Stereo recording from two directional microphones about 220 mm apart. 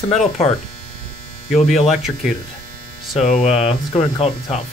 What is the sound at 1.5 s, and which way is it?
Speech, centre (ahead or behind).